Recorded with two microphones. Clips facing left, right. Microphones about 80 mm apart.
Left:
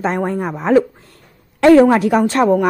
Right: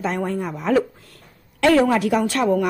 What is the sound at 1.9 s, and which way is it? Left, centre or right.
Speech, left.